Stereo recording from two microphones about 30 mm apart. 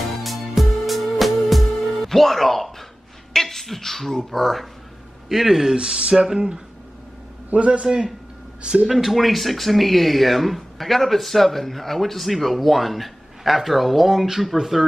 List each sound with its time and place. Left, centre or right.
0.2 s music: centre
2.0 s speech: centre
5.3 s speech: centre
5.8 s speech: right
7.5 s a man's voice: right
7.8 s speech: right
8.8 s speech: centre